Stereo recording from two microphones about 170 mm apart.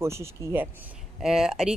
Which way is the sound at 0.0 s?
15° right (ahead or behind).